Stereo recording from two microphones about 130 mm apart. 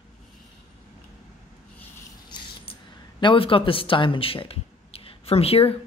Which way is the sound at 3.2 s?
40° left (ahead or behind).